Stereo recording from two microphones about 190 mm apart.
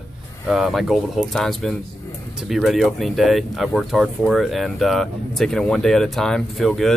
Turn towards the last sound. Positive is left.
turn(degrees=0)  # may be behind; listen again after turning